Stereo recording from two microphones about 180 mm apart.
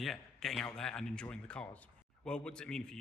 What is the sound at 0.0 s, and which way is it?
Speech, centre (ahead or behind).